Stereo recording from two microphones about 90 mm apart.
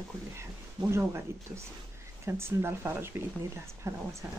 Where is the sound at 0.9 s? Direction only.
30° right (ahead or behind).